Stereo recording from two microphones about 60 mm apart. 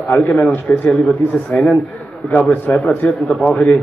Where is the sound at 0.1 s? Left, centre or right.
Left.